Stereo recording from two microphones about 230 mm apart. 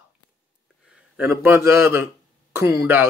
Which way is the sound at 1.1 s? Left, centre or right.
Centre.